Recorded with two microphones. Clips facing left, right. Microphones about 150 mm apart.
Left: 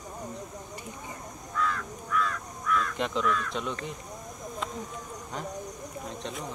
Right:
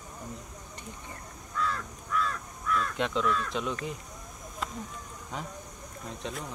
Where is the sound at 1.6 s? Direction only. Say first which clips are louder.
Left 2 dB; 35° right (ahead or behind).